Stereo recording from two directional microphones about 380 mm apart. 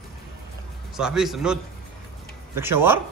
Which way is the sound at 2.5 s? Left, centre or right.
Centre.